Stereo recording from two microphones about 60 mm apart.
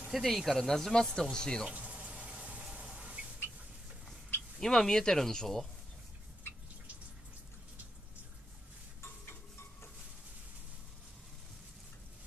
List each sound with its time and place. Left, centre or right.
0.1 s speech: centre
1.7 s a sound: right
4.6 s speech: centre
9.0 s stir: left